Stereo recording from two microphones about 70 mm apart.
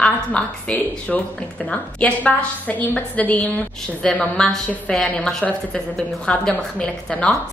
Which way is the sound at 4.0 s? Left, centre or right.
Centre.